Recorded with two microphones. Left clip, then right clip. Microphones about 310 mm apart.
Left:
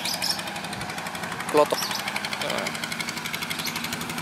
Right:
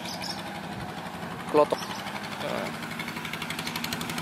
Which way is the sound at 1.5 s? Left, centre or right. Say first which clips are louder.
Left 2 dB; centre.